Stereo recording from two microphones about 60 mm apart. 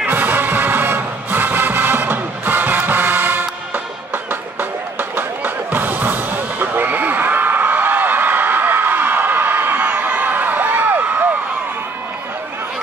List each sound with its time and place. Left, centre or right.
0.1 s music: right